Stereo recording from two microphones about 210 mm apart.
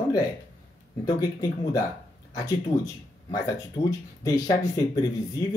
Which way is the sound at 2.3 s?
15° left (ahead or behind).